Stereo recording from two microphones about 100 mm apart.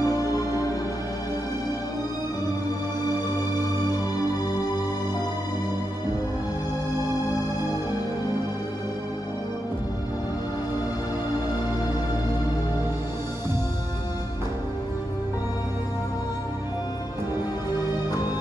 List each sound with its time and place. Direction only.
0.0 s music: 35° left (ahead or behind)